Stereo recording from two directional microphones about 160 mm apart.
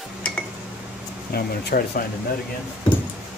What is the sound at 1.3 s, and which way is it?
Speech, 75° left (ahead or behind).